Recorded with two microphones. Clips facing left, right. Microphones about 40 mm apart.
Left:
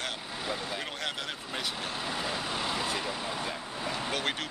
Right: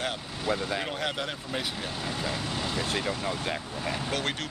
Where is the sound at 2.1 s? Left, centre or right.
Centre.